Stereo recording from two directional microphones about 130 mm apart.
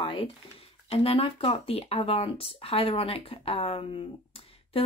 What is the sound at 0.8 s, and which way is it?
Speech, 50° left (ahead or behind).